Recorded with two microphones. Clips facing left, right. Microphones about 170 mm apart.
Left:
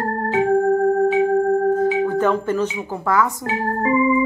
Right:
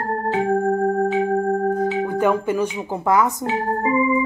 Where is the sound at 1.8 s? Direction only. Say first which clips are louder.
Left 2 dB; 10° right (ahead or behind).